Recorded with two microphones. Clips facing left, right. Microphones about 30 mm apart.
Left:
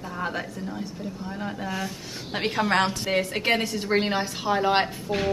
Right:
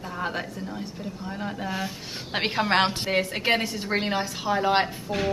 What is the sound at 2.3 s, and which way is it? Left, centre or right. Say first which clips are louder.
Speech: even; right.